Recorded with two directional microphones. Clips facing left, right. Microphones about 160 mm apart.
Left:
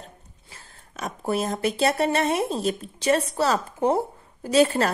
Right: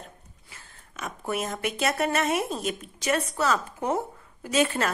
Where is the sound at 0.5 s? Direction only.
35° left (ahead or behind).